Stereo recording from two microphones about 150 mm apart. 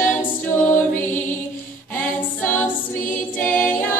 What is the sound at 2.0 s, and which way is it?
A capella, 10° left (ahead or behind).